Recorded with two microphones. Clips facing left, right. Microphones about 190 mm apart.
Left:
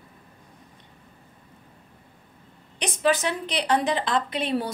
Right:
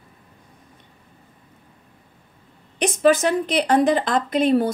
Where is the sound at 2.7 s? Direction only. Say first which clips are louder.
Right 6 dB; 50° right (ahead or behind).